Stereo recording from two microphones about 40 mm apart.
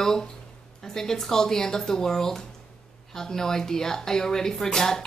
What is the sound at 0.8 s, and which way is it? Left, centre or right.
Speech, centre.